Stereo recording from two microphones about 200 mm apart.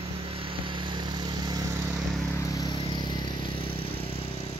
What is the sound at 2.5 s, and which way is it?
Vehicle, 20° left (ahead or behind).